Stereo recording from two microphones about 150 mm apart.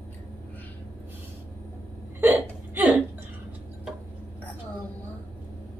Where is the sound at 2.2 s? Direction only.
10° right (ahead or behind).